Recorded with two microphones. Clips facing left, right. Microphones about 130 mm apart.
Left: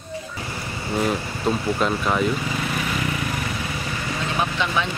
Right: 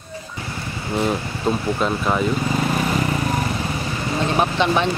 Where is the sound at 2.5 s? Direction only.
40° right (ahead or behind).